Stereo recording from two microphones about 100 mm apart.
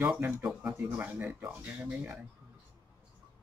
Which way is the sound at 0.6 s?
20° right (ahead or behind).